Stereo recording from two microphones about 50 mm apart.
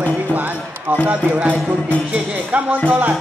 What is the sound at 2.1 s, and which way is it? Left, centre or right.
Music, right.